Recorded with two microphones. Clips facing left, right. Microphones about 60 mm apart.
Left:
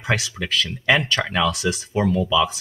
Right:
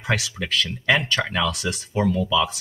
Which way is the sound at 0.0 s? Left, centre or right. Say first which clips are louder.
Left 1 dB; centre.